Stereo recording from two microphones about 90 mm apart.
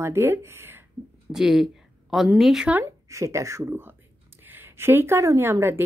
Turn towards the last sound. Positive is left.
turn(degrees=-25)  # may be behind; listen again after turning